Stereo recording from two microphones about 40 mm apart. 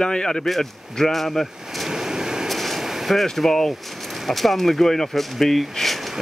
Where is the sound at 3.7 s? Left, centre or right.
Centre.